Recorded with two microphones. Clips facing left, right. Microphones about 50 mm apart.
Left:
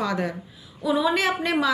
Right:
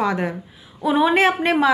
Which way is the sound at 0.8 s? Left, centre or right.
Right.